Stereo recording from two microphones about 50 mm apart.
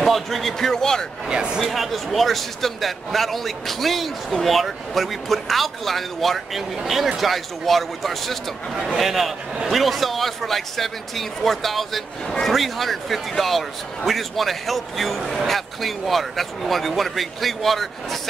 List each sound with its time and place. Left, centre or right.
0.0 s speech: centre
1.2 s speech: centre
1.7 s speech: centre